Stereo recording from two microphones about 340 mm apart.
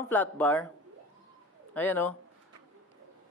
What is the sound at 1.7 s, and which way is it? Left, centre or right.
Speech, centre.